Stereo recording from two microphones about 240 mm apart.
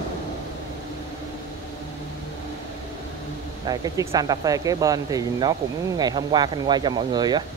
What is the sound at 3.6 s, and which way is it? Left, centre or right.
Speech, centre.